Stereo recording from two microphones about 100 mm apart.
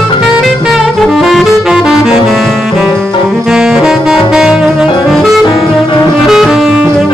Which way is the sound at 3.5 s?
5° right (ahead or behind).